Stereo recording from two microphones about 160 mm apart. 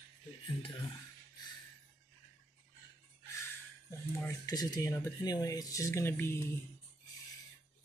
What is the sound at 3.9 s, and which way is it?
Speech, 20° left (ahead or behind).